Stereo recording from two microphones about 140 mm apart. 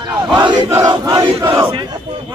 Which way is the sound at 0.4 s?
30° right (ahead or behind).